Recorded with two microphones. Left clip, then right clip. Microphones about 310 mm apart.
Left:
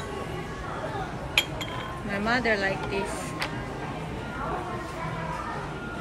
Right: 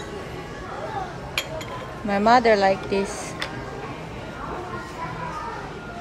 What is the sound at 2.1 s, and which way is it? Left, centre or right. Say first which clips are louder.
Speech: right 9 dB; centre.